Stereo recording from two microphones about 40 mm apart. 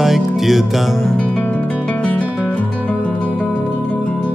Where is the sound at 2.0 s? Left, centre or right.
Left.